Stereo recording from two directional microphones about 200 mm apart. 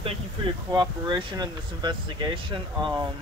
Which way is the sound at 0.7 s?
25° right (ahead or behind).